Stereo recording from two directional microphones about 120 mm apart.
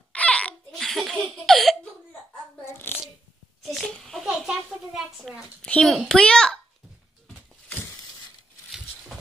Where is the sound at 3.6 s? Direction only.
5° left (ahead or behind).